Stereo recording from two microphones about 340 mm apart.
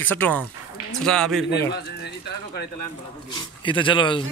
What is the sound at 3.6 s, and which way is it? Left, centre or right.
Speech, centre.